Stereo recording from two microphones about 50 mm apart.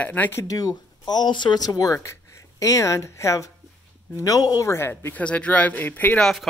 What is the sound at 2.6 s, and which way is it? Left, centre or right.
Speech, left.